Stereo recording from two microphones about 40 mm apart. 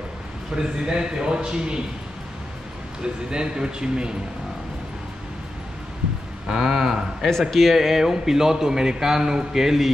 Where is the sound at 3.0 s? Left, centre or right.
Right.